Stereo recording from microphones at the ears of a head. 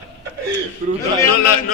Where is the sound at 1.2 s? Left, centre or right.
Left.